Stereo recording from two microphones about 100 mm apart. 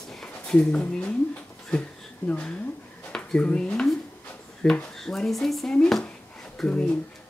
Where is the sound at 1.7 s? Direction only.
10° left (ahead or behind).